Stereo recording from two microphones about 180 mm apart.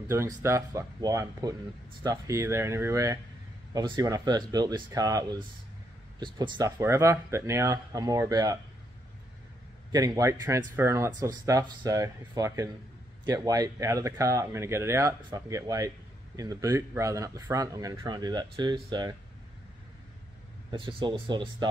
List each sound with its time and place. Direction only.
0.1 s speech: 15° right (ahead or behind)
9.9 s speech: 20° right (ahead or behind)
20.7 s speech: 30° right (ahead or behind)